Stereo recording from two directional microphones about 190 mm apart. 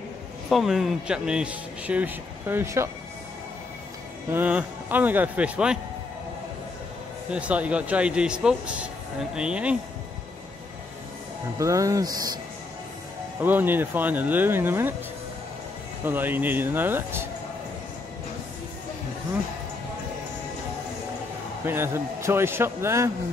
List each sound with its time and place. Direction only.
0.5 s speech: centre (ahead or behind)
4.3 s speech: 10° right (ahead or behind)
7.2 s speech: 5° right (ahead or behind)
11.5 s speech: 15° right (ahead or behind)
13.4 s speech: 10° right (ahead or behind)
16.0 s speech: 10° right (ahead or behind)
21.6 s speech: 10° right (ahead or behind)